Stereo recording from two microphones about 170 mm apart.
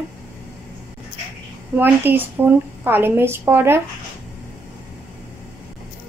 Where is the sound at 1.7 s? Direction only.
10° right (ahead or behind).